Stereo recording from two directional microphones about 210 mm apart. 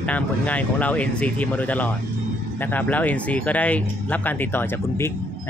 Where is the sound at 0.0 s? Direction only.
5° left (ahead or behind).